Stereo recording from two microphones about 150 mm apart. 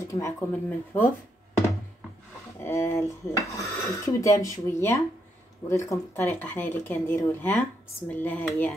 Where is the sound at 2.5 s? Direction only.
15° left (ahead or behind).